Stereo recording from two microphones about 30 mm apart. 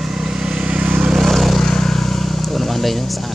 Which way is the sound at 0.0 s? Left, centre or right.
Centre.